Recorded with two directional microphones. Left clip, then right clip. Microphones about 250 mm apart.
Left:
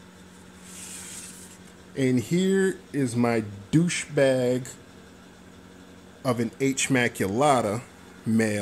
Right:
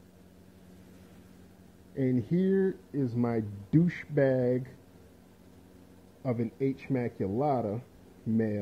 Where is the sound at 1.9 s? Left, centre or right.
Centre.